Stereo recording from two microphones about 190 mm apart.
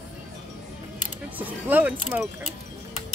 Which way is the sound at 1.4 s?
10° right (ahead or behind).